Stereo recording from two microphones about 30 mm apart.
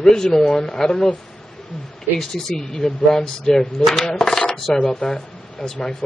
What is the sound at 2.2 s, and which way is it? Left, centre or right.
Coin, centre.